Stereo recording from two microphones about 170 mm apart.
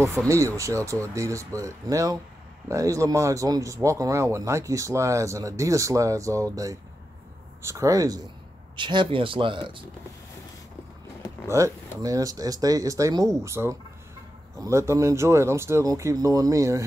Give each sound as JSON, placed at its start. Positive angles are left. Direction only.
{"t": 0.3, "sound": "speech", "side_deg": -15}
{"t": 11.4, "sound": "speech", "side_deg": -15}